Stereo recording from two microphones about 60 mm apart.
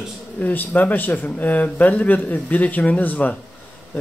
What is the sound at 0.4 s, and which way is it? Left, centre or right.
A man's voice, left.